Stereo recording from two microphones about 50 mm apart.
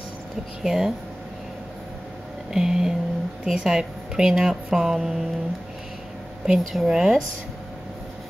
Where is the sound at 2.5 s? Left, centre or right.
Centre.